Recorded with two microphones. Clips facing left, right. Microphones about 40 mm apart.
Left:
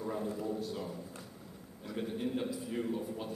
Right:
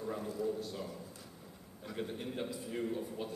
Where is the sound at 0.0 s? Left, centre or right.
Centre.